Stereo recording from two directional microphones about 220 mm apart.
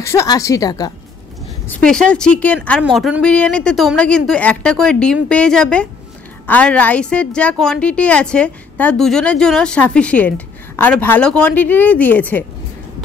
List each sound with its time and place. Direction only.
0.0 s speech: 15° left (ahead or behind)
1.7 s a woman's voice: 5° left (ahead or behind)